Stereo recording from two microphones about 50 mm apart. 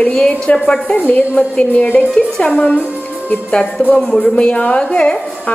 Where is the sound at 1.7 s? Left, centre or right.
Left.